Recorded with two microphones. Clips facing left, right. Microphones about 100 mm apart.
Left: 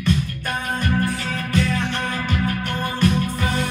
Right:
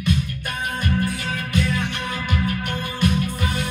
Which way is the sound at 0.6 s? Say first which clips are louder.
Left 1 dB; 45° left (ahead or behind).